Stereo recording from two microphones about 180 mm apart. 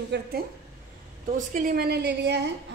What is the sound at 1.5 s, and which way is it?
A woman's voice, 55° right (ahead or behind).